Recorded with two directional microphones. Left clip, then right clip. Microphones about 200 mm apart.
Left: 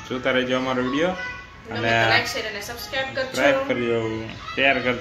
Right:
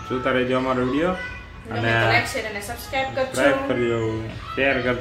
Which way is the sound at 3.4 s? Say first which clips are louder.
Even; 15° left (ahead or behind).